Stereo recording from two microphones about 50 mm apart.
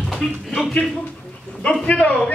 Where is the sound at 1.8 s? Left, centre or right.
Left.